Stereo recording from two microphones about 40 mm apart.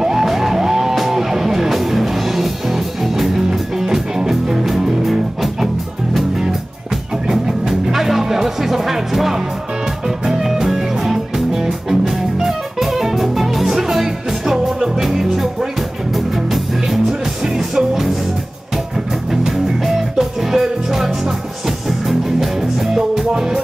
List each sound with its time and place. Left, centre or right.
0.0 s music: centre
7.2 s music: centre
19.4 s music: centre